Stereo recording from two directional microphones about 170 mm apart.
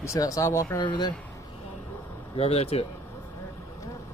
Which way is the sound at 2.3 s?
35° left (ahead or behind).